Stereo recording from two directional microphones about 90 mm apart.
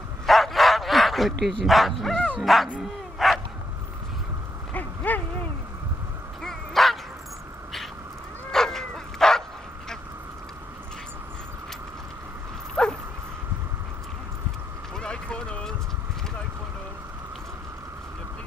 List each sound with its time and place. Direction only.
0.3 s bow-wow: centre (ahead or behind)
2.4 s speech: centre (ahead or behind)
2.8 s dog: centre (ahead or behind)
4.7 s a sound: 20° left (ahead or behind)
6.4 s dog: centre (ahead or behind)
8.5 s bow-wow: 5° left (ahead or behind)
12.8 s dog: 10° left (ahead or behind)
15.0 s run: 10° left (ahead or behind)